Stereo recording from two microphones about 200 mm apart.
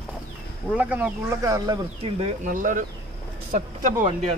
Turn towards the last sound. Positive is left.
turn(degrees=-40)  # may be behind; listen again after turning